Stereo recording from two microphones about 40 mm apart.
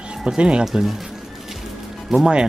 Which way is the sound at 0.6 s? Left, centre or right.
Centre.